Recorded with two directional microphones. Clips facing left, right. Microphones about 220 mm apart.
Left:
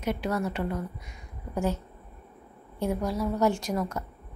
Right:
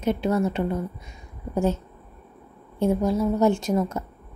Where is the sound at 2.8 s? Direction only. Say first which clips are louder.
Right 6 dB; 25° right (ahead or behind).